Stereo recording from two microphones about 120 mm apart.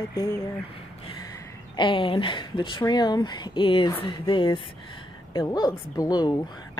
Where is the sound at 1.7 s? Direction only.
45° left (ahead or behind).